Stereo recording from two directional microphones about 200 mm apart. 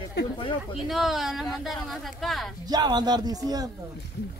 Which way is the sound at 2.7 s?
20° right (ahead or behind).